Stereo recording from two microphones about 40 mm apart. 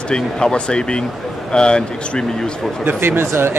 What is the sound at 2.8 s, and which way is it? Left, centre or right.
Speech, right.